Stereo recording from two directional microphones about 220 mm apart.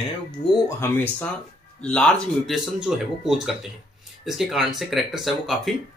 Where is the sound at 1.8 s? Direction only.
5° left (ahead or behind).